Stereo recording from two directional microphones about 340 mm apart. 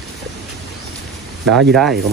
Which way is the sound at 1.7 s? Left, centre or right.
Centre.